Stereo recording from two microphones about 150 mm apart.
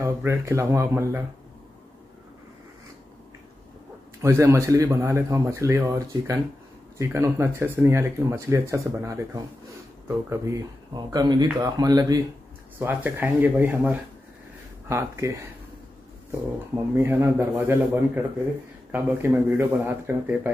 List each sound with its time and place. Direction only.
0.0 s speech: 15° right (ahead or behind)
4.2 s speech: 20° right (ahead or behind)
12.7 s speech: 15° right (ahead or behind)